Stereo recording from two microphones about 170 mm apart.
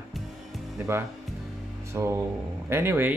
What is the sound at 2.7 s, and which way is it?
Speech, 15° right (ahead or behind).